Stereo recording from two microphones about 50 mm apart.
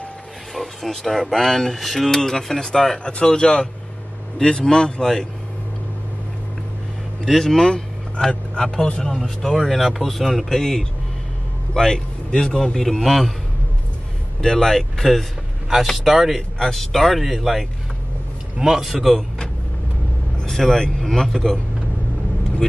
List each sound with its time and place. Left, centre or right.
0.6 s a man's voice: centre
7.2 s a man's voice: centre
9.0 s a man's voice: centre
14.4 s a man's voice: centre
16.5 s speech: centre
20.4 s speech: centre
22.6 s a man's voice: centre